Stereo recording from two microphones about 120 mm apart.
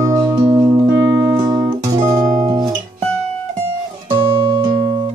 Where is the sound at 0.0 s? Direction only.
25° right (ahead or behind).